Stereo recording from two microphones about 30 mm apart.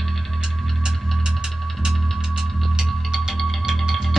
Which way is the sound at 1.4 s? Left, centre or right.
Centre.